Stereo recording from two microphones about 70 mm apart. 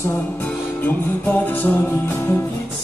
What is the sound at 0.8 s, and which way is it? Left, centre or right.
Music, left.